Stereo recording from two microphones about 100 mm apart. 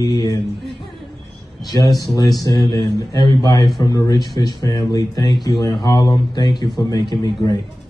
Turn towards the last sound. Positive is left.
turn(degrees=40)  # may be behind; listen again after turning